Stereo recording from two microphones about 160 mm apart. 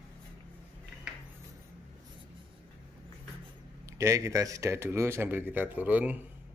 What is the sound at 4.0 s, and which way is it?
Speech, 20° right (ahead or behind).